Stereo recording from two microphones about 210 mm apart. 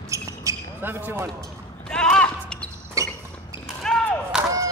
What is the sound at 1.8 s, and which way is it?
Basketball bounce, 5° left (ahead or behind).